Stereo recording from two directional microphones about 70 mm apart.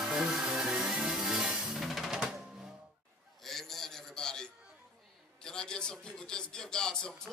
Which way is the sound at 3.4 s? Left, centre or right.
Centre.